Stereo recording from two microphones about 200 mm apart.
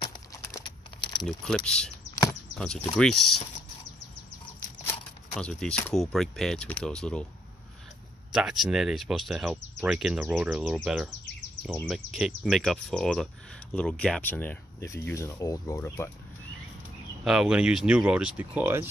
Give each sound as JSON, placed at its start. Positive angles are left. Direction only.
{"t": 0.3, "sound": "a sound", "side_deg": 15}
{"t": 1.2, "sound": "speech", "side_deg": 5}
{"t": 5.4, "sound": "speech", "side_deg": 5}
{"t": 8.3, "sound": "speech", "side_deg": -5}
{"t": 17.2, "sound": "speech", "side_deg": -5}